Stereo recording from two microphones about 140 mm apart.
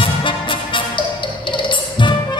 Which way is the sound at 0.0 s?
35° left (ahead or behind).